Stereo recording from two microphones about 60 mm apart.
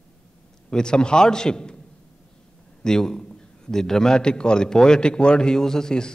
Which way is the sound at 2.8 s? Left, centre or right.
Centre.